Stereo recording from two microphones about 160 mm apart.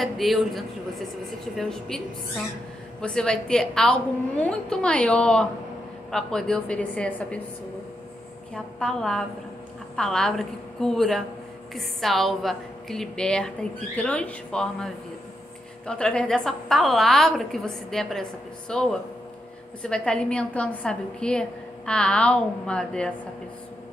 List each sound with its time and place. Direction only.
0.0 s a woman's voice: centre (ahead or behind)
8.7 s a woman's voice: 5° left (ahead or behind)
15.9 s a woman's voice: 5° left (ahead or behind)